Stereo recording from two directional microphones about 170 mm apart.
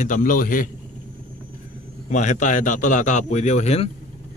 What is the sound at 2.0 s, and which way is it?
A man's voice, 45° left (ahead or behind).